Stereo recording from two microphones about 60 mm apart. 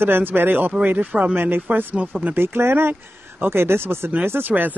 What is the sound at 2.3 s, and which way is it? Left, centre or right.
Speech, right.